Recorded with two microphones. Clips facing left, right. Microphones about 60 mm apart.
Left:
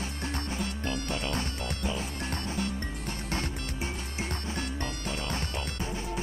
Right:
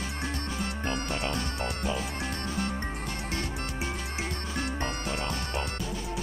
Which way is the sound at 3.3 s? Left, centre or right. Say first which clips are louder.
Left 1 dB; left.